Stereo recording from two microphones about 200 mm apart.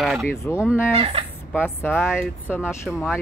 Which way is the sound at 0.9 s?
30° right (ahead or behind).